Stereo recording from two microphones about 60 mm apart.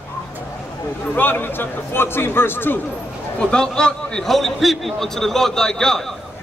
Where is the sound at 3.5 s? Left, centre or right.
Centre.